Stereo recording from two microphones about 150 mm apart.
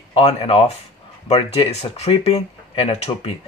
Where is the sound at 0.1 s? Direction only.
40° left (ahead or behind).